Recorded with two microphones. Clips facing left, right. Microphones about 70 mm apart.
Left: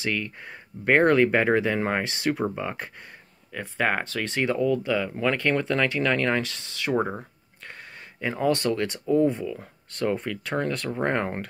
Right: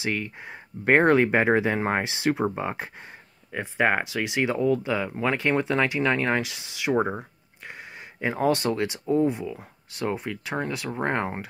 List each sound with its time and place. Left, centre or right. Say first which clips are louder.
0.0 s speech: even; right
4.8 s speech: left 1 dB; right; by 11.4 s centre